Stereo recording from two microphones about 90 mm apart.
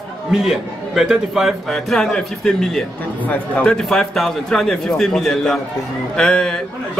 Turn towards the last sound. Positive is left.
turn(degrees=10)  # may be behind; listen again after turning